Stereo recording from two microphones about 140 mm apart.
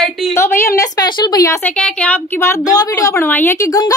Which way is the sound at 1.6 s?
10° left (ahead or behind).